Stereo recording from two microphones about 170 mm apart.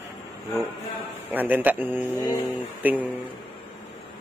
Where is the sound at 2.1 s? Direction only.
15° left (ahead or behind).